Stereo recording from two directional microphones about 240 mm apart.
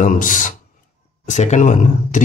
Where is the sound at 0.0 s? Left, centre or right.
Left.